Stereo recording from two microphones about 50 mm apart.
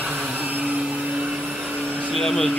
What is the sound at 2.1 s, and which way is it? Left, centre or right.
Speech, centre.